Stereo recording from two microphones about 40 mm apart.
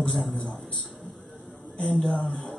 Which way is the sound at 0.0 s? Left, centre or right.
Left.